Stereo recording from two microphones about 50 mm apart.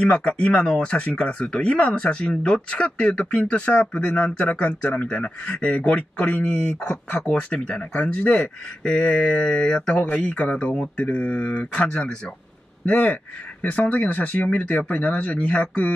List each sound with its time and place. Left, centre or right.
0.0 s speech: left
7.4 s speech: left